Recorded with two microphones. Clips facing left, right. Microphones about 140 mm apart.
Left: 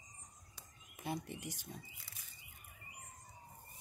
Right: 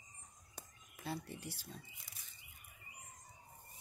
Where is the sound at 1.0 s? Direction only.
15° left (ahead or behind).